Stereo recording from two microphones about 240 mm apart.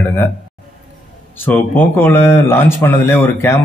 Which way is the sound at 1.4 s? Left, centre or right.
Centre.